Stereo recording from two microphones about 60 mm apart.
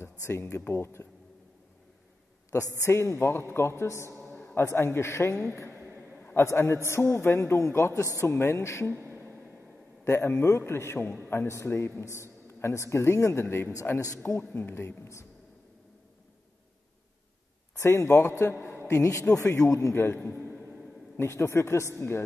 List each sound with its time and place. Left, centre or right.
0.2 s a man's voice: left
2.5 s a man's voice: left
8.4 s a man's voice: left
8.9 s a sound: right
10.0 s a man's voice: left
14.1 s a man's voice: left
14.5 s speech: left
14.8 s a man's voice: left
17.7 s a man's voice: left
21.2 s a man's voice: left